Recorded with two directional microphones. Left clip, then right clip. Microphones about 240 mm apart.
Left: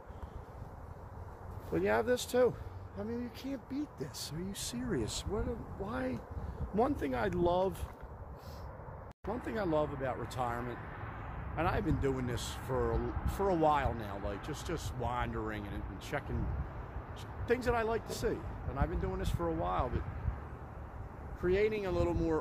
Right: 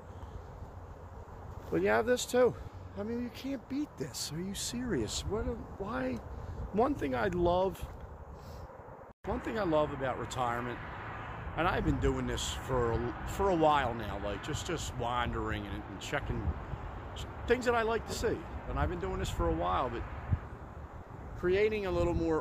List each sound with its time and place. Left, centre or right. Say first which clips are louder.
1.7 s speech: right 2 dB; centre
9.3 s speech: right 3 dB; centre
21.4 s speech: right 2 dB; centre